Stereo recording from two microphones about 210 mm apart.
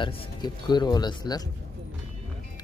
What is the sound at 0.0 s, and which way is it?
Speech, 25° left (ahead or behind).